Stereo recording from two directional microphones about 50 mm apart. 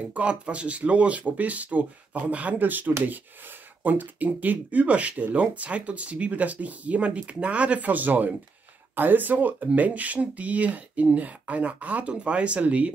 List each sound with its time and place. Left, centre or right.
0.0 s speech: right